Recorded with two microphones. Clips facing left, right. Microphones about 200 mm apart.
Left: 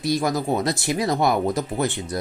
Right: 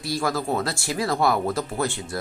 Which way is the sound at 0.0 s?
20° left (ahead or behind).